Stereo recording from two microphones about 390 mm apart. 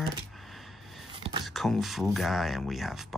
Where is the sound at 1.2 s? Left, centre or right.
Centre.